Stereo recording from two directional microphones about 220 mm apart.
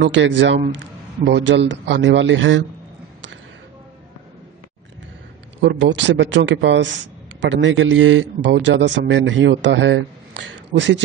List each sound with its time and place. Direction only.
0.0 s a man's voice: 55° right (ahead or behind)
5.6 s a man's voice: 55° right (ahead or behind)
10.7 s speech: 35° right (ahead or behind)